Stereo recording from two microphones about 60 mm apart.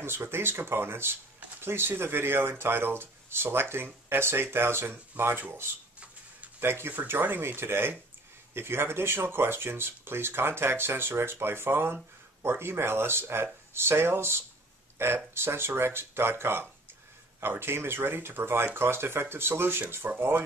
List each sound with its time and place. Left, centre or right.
0.0 s speech: right